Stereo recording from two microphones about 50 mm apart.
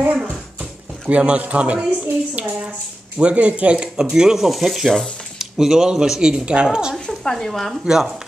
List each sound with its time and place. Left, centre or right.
0.6 s a sound: right
1.9 s a woman's voice: right; by 4.5 s centre
4.5 s sizzle: centre
5.4 s speech: centre
7.1 s speech: centre
7.8 s speech: centre